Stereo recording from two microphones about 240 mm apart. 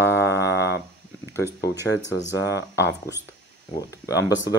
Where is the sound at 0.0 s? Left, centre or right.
Centre.